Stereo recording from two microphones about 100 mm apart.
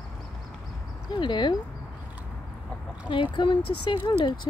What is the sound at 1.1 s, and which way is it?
Speech, 50° left (ahead or behind).